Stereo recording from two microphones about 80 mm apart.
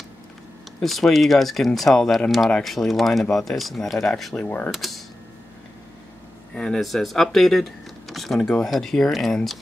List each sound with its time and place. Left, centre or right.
0.7 s speech: centre
4.4 s mechanisms: left
4.6 s speech: centre
6.5 s speech: centre